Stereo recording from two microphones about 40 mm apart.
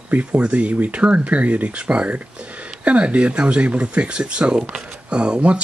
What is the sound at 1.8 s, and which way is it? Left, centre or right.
Speech, right.